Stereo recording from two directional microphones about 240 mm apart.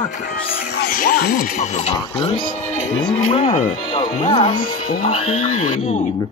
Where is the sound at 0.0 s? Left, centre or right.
Left.